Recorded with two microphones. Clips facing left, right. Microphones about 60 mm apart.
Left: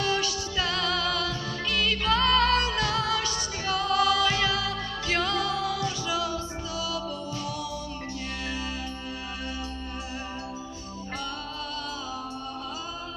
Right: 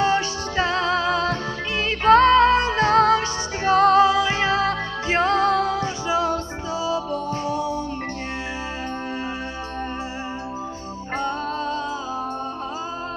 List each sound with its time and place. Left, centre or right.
0.0 s music: right
4.0 s music: right
11.1 s music: right